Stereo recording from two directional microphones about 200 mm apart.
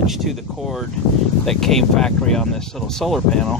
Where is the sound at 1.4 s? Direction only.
Centre (ahead or behind).